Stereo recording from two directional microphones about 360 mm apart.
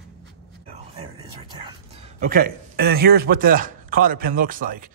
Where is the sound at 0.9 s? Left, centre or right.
Centre.